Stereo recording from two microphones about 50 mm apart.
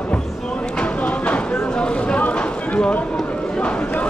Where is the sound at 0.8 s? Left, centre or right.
Left.